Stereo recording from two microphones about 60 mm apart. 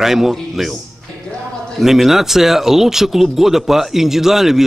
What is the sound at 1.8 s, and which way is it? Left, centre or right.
A man's voice, centre.